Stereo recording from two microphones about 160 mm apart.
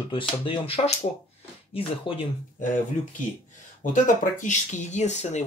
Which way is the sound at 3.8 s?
55° left (ahead or behind).